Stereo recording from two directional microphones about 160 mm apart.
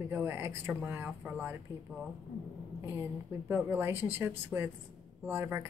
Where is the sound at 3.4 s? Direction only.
15° right (ahead or behind).